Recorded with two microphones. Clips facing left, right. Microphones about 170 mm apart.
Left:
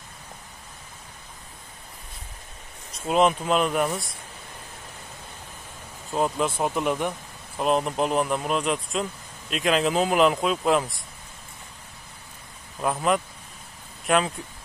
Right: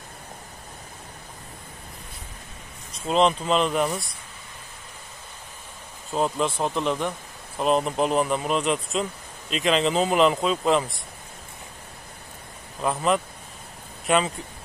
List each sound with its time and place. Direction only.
2.9 s speech: 5° left (ahead or behind)
6.1 s speech: 5° left (ahead or behind)
12.8 s speech: centre (ahead or behind)